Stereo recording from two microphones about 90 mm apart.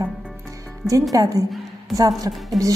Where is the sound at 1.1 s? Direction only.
40° right (ahead or behind).